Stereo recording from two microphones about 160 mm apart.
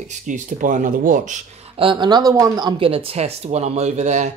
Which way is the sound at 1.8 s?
30° right (ahead or behind).